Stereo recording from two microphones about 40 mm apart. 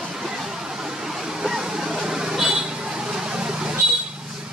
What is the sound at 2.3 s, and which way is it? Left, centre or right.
Vehicle, centre.